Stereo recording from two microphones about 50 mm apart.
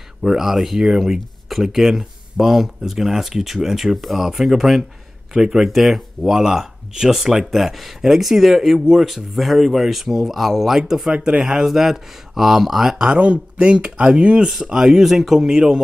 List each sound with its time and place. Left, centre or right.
0.2 s speech: centre
13.1 s speech: right